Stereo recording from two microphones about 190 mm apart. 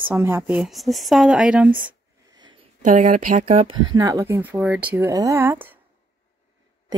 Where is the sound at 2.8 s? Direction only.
40° right (ahead or behind).